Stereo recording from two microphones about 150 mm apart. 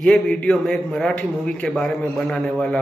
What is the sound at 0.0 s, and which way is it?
A man's voice, 5° left (ahead or behind).